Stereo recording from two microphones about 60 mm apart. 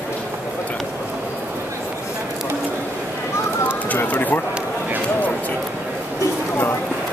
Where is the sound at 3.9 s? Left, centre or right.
Left.